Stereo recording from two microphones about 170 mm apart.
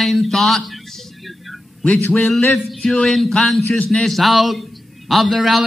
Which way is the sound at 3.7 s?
5° left (ahead or behind).